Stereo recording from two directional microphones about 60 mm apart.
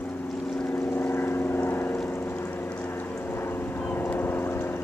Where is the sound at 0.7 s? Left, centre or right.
Left.